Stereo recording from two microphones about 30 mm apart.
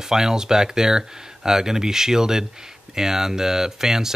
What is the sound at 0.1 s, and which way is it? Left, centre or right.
Speech, centre.